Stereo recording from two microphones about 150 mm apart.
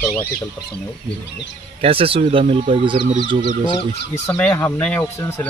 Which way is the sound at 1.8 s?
40° right (ahead or behind).